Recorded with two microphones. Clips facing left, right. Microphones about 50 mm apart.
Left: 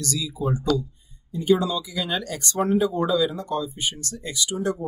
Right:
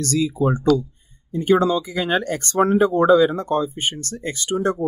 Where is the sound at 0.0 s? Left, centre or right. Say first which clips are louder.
Right 8 dB; right.